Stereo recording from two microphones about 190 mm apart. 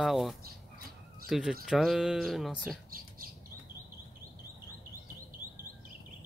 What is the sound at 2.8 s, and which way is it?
Squawk, 50° right (ahead or behind).